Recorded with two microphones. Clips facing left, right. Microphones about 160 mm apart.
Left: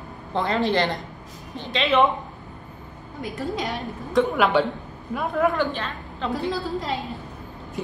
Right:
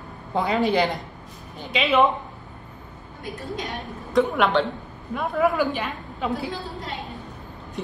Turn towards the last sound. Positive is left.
turn(degrees=5)  # may be behind; listen again after turning